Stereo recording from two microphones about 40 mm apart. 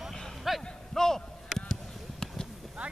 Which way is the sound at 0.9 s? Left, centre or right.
Centre.